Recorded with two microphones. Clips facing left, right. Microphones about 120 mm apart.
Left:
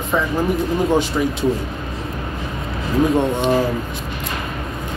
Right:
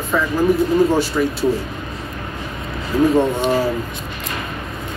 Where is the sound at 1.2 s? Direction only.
20° left (ahead or behind).